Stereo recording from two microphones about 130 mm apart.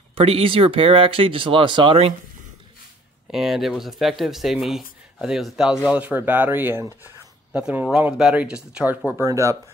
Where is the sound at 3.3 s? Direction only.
Centre (ahead or behind).